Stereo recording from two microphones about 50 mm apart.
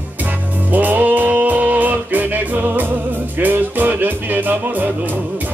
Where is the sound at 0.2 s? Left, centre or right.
Right.